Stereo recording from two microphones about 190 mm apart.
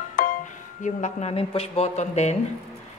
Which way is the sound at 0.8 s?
35° left (ahead or behind).